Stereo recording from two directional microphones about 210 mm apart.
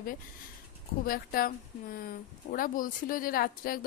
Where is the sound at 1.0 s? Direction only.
45° left (ahead or behind).